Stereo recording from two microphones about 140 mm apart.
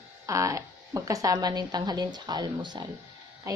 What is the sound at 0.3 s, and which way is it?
A woman's voice, 20° right (ahead or behind).